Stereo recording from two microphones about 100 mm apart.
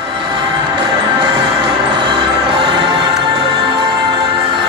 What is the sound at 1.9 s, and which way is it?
Music, 55° right (ahead or behind).